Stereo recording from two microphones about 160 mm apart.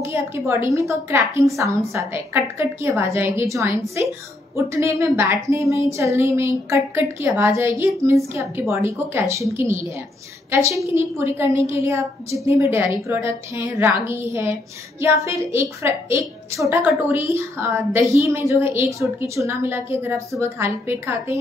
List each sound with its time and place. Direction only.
0.0 s a woman's voice: 15° right (ahead or behind)
10.9 s a woman's voice: 15° right (ahead or behind)